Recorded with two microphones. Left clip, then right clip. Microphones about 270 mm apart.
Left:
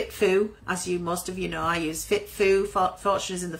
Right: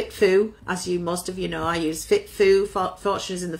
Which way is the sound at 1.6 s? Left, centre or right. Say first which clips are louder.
Right 1 dB; left.